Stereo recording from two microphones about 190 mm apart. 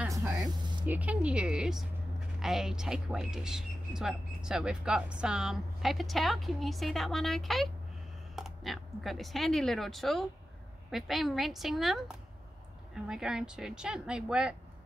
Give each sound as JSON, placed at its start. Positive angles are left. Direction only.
{"t": 0.1, "sound": "spray", "side_deg": -15}
{"t": 0.8, "sound": "speech", "side_deg": -10}